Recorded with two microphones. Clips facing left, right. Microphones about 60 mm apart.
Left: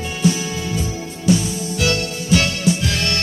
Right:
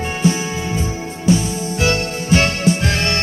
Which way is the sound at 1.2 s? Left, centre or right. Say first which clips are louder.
Right 1 dB; right.